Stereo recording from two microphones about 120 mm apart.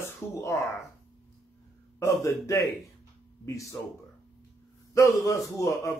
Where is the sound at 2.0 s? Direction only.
25° left (ahead or behind).